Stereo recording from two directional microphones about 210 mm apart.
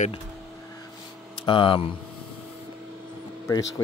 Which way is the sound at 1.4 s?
25° left (ahead or behind).